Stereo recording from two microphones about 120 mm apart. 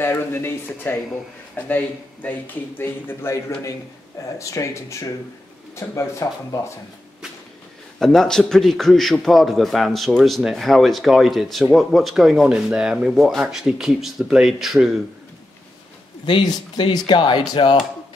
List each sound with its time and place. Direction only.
0.0 s a man's voice: 20° left (ahead or behind)
8.0 s a man's voice: 5° left (ahead or behind)
16.3 s speech: 45° left (ahead or behind)